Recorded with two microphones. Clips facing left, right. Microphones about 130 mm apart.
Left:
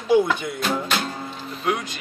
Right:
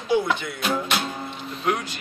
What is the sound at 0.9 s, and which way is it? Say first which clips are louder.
Music: left 1 dB; centre (ahead or behind).